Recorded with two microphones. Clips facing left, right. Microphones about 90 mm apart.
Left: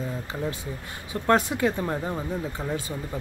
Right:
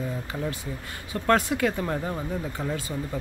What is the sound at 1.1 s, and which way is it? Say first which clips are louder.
Speech: even; 20° left (ahead or behind).